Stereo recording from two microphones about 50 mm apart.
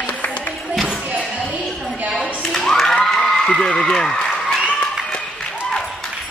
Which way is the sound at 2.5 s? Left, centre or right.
Centre.